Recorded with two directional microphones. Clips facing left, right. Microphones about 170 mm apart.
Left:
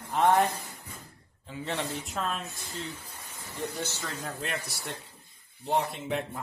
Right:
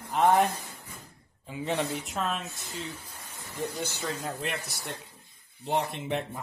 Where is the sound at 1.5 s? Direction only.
15° right (ahead or behind).